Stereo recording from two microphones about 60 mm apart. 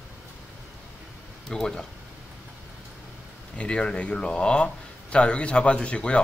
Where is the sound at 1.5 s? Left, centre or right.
Centre.